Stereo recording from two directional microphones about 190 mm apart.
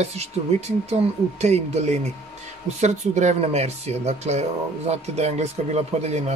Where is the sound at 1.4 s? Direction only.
35° right (ahead or behind).